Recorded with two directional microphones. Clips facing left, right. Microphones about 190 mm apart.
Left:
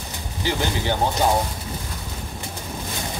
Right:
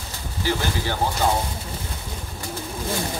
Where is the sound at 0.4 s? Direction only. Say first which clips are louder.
Even; 20° left (ahead or behind).